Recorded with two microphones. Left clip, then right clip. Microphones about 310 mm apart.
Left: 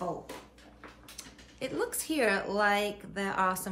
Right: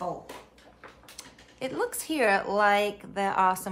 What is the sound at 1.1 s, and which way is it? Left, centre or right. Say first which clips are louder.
A woman's voice: right 1 dB; centre.